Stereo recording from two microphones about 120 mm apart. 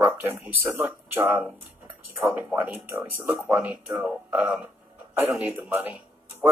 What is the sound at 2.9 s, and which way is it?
Speech, 25° right (ahead or behind).